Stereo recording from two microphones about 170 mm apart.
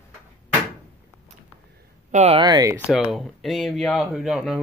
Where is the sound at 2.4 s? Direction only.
25° right (ahead or behind).